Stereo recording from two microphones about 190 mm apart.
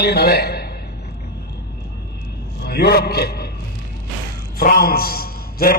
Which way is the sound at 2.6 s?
55° left (ahead or behind).